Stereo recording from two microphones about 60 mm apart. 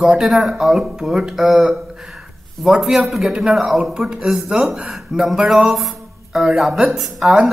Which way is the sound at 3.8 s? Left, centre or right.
Centre.